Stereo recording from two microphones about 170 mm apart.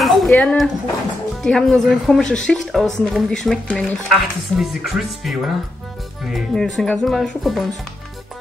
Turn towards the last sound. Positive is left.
turn(degrees=0)  # may be behind; listen again after turning